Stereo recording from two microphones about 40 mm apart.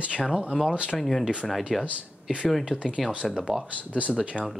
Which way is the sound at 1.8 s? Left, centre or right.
Right.